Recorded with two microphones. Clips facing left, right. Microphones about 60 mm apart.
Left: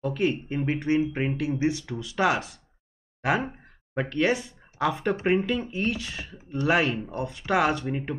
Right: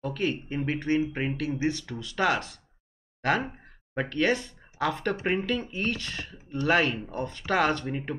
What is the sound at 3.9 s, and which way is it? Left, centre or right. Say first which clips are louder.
Speech: left 1 dB; centre.